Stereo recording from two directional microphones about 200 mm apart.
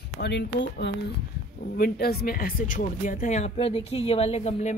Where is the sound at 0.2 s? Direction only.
60° left (ahead or behind).